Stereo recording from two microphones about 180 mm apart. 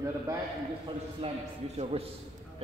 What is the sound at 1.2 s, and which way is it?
Speech, 30° right (ahead or behind).